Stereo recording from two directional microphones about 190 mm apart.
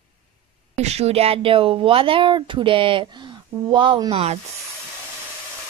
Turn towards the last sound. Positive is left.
turn(degrees=-30)  # may be behind; listen again after turning